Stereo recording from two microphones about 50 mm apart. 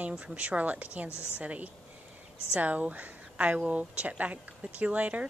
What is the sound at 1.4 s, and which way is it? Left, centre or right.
A woman's voice, right.